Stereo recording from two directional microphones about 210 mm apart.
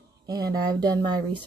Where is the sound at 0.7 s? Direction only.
20° right (ahead or behind).